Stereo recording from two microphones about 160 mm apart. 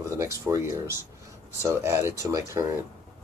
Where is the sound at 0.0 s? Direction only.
20° right (ahead or behind).